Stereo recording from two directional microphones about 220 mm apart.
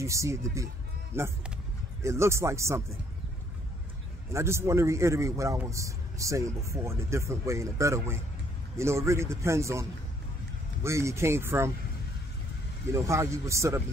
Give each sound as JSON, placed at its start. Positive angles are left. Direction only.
{"t": 0.0, "sound": "a man's voice", "side_deg": -15}
{"t": 4.3, "sound": "a man's voice", "side_deg": -10}
{"t": 12.9, "sound": "a man's voice", "side_deg": -15}